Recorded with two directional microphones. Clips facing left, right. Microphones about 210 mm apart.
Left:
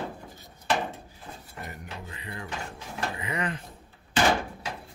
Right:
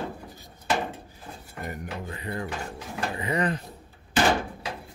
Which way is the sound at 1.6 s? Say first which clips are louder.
Right 9 dB; 45° right (ahead or behind).